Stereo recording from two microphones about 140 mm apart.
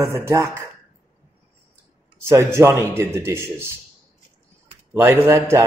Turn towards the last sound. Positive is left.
turn(degrees=-15)  # may be behind; listen again after turning